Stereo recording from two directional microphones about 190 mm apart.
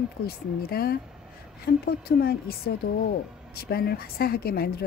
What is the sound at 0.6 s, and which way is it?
A woman's voice, 55° left (ahead or behind).